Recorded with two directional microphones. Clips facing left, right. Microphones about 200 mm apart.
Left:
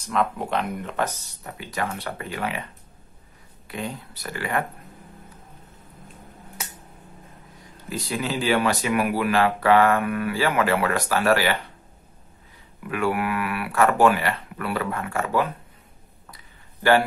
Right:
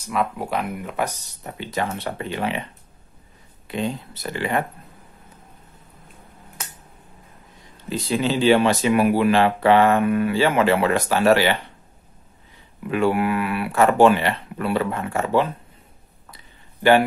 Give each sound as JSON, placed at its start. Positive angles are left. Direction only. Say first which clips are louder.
{"t": 0.0, "sound": "speech", "louder": "even", "side_deg": -5}
{"t": 1.4, "sound": "speech", "louder": "right 3 dB", "side_deg": -25}
{"t": 3.6, "sound": "speech", "louder": "right 6 dB", "side_deg": -25}
{"t": 7.9, "sound": "speech", "louder": "right 5 dB", "side_deg": -25}
{"t": 12.8, "sound": "speech", "louder": "right 4 dB", "side_deg": -25}